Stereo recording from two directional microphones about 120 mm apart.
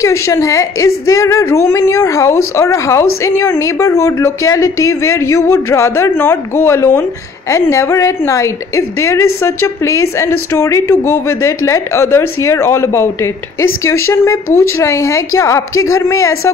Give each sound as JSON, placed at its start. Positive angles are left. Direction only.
{"t": 0.0, "sound": "a woman's voice", "side_deg": 25}